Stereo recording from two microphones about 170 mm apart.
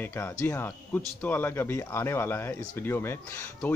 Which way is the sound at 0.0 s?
10° left (ahead or behind).